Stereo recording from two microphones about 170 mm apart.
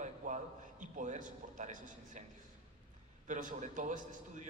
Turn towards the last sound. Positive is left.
turn(degrees=-50)  # may be behind; listen again after turning